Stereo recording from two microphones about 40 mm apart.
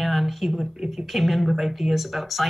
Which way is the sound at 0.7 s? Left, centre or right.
Centre.